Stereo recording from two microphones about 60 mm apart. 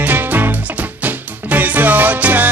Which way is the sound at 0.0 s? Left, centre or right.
Right.